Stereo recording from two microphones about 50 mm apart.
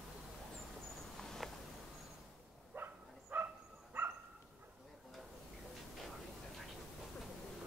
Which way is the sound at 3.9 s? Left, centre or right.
Right.